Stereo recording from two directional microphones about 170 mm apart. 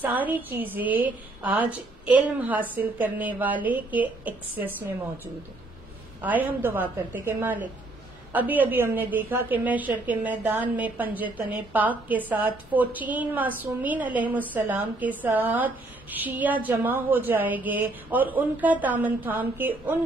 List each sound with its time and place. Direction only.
0.0 s a woman's voice: 10° right (ahead or behind)